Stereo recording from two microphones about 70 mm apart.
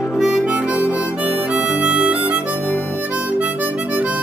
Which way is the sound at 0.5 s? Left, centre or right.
Centre.